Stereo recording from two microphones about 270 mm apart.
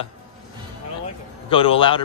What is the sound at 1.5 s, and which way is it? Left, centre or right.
Speech, centre.